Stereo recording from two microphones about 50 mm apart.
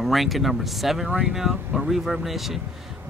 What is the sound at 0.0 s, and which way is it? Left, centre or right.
A man's voice, centre.